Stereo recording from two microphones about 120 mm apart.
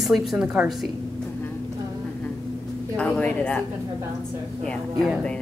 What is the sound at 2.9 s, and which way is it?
Speech, 10° left (ahead or behind).